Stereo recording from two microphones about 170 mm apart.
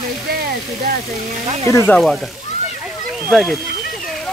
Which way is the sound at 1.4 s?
35° right (ahead or behind).